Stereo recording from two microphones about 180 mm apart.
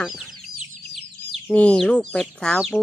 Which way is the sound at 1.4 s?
5° left (ahead or behind).